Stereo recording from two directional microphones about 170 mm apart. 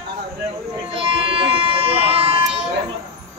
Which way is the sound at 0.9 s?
35° right (ahead or behind).